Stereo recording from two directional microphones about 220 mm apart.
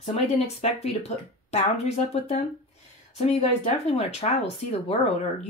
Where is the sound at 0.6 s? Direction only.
30° left (ahead or behind).